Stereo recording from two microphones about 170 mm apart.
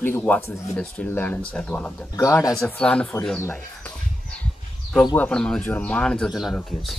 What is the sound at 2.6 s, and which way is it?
Speech, 5° left (ahead or behind).